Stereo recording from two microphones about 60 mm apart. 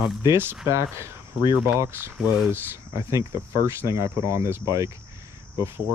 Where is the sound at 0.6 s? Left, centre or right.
Right.